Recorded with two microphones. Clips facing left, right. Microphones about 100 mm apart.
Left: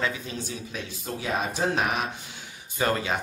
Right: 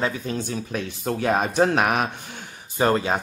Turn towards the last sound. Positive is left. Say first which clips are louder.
# right 5 dB
turn(degrees=-35)  # may be behind; listen again after turning